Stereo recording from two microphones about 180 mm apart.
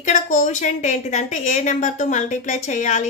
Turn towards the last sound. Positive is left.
turn(degrees=40)  # may be behind; listen again after turning